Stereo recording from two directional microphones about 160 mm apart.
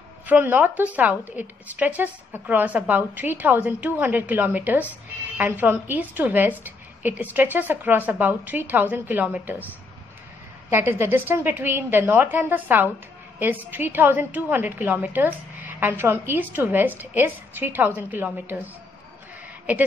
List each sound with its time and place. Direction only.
0.3 s a woman's voice: 10° right (ahead or behind)
10.7 s a woman's voice: 15° right (ahead or behind)